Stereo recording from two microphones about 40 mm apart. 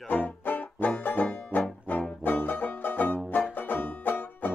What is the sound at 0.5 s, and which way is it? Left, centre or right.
Music, left.